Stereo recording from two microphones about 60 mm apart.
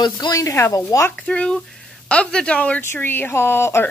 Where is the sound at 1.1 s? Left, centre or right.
Centre.